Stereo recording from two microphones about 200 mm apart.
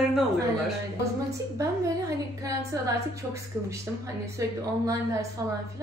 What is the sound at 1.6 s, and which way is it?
A woman's voice, 15° right (ahead or behind).